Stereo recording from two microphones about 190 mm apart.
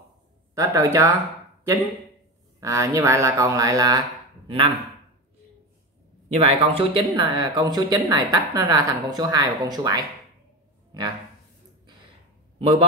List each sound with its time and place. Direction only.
0.6 s speech: 15° right (ahead or behind)
2.6 s speech: 15° right (ahead or behind)
6.2 s a woman's voice: 30° right (ahead or behind)
12.5 s a man's voice: 30° right (ahead or behind)